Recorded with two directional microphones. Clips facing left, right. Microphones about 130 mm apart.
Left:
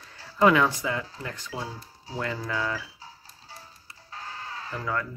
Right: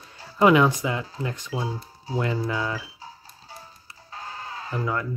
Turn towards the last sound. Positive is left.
turn(degrees=-20)  # may be behind; listen again after turning